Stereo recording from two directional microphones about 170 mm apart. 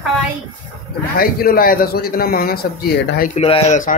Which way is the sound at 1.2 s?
60° left (ahead or behind).